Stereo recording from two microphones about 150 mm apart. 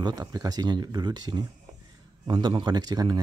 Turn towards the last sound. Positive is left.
turn(degrees=-25)  # may be behind; listen again after turning